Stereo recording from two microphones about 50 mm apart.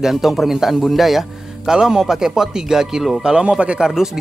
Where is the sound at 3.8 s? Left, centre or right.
Centre.